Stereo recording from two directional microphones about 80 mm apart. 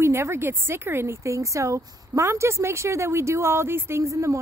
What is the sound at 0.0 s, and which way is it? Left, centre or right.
Speech, right.